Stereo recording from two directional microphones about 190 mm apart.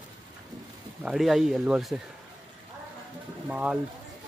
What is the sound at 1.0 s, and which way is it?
Speech, centre (ahead or behind).